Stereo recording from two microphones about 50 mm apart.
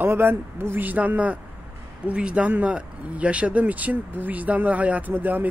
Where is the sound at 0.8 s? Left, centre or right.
Right.